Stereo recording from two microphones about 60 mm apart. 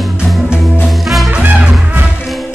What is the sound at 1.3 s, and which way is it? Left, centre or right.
Music, centre.